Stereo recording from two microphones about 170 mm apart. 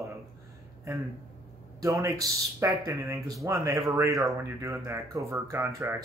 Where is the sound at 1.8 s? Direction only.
20° right (ahead or behind).